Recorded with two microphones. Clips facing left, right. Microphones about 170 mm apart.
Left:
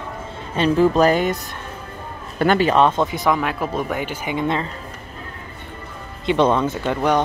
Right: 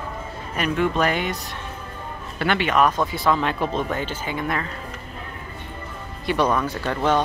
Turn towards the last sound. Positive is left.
turn(degrees=15)  # may be behind; listen again after turning